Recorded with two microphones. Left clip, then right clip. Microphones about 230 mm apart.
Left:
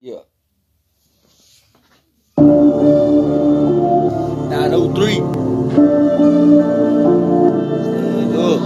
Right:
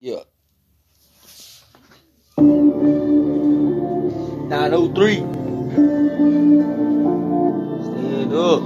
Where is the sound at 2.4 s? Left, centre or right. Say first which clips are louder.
Left 4 dB; left.